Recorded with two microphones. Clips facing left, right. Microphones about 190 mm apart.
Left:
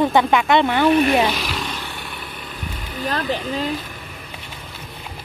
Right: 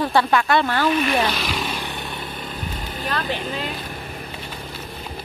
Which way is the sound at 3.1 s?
40° left (ahead or behind).